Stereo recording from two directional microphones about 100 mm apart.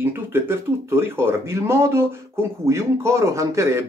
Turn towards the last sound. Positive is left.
turn(degrees=-30)  # may be behind; listen again after turning